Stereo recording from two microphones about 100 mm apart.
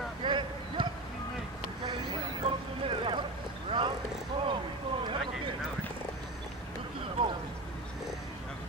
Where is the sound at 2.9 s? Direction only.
55° right (ahead or behind).